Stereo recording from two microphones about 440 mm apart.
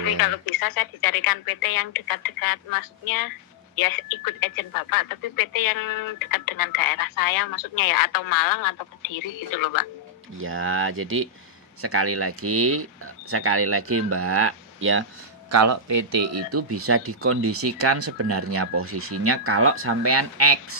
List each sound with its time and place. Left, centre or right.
0.2 s speech: left
10.3 s speech: right